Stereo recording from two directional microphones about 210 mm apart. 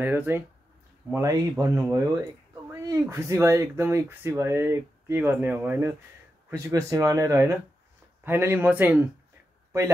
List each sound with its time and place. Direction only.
0.0 s speech: 10° right (ahead or behind)